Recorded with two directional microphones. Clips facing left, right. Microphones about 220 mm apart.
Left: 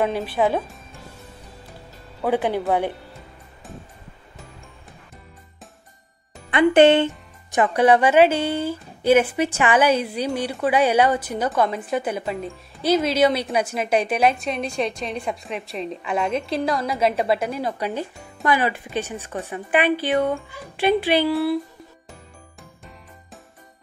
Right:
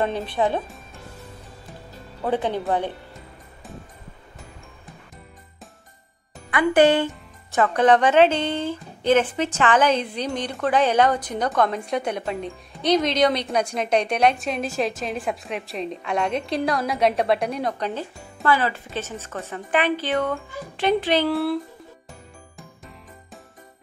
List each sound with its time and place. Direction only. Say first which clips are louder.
0.0 s speech: left 2 dB; 5° left (ahead or behind)
2.2 s speech: left 2 dB; 10° left (ahead or behind)
6.5 s a woman's voice: left 3 dB; 25° left (ahead or behind); by 21.5 s 5° left (ahead or behind)